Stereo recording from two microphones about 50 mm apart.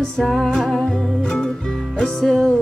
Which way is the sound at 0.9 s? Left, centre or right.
Centre.